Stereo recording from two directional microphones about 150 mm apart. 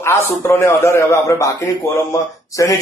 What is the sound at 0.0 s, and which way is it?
A man's voice, 15° left (ahead or behind).